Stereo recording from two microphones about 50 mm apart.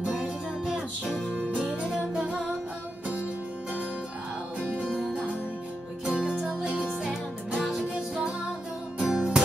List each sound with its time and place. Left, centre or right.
0.0 s music: centre
6.0 s music: centre
7.0 s music: centre